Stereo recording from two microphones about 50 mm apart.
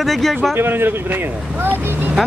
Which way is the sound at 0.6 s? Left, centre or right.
Right.